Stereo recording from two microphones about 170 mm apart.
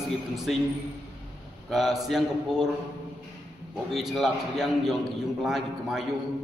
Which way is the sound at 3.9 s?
Centre (ahead or behind).